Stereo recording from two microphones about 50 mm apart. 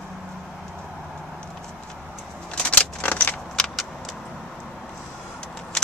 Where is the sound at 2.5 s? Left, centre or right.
Left.